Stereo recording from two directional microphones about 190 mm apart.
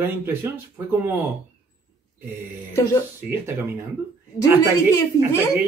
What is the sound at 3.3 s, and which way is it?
Speech, 10° right (ahead or behind).